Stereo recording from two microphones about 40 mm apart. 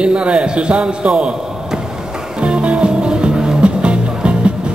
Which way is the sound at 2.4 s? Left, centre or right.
Right.